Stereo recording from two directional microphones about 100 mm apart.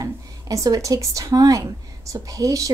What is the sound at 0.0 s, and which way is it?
A woman's voice, 35° right (ahead or behind).